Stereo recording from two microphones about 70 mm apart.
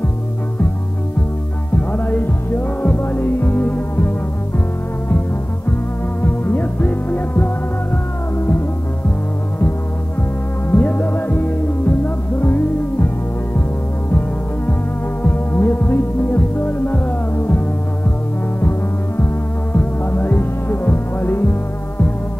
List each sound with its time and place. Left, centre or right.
1.8 s music: left
6.2 s music: left
10.7 s music: left
15.2 s music: left
19.1 s music: left